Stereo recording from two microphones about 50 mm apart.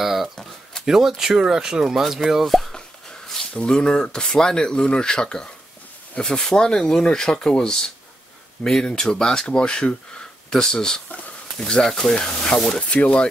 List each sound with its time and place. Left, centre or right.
0.0 s a sound: centre
0.8 s speech: centre
3.5 s speech: centre